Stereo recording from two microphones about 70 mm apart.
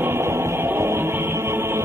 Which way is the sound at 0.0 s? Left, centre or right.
Right.